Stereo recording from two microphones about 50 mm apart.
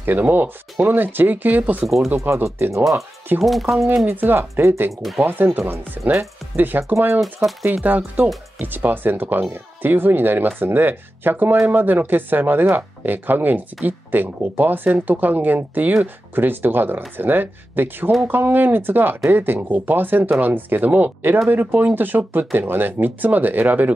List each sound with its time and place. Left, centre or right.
0.0 s speech: right
2.0 s speech: right
2.8 s speech: centre
3.7 s speech: right
4.1 s speech: right
4.4 s speech: right
5.2 s speech: right
7.8 s speech: right